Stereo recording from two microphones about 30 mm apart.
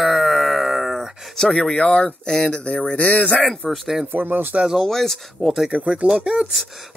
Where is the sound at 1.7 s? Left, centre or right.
Left.